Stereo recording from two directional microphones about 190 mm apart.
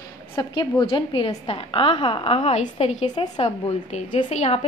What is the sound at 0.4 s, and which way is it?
A woman's voice, 25° left (ahead or behind).